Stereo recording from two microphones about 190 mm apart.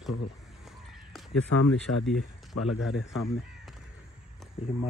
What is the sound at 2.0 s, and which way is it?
Speech, centre (ahead or behind).